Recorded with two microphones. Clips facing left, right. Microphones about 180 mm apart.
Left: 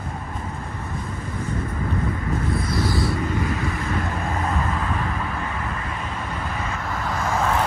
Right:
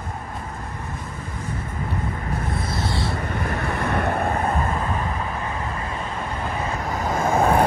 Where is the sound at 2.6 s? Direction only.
25° right (ahead or behind).